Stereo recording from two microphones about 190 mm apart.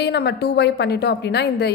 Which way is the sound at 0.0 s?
60° left (ahead or behind).